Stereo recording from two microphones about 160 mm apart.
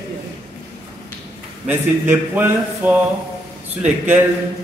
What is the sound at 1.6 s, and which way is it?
A man's voice, 10° right (ahead or behind).